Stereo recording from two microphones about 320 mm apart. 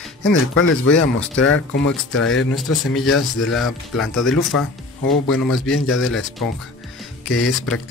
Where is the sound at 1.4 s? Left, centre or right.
Left.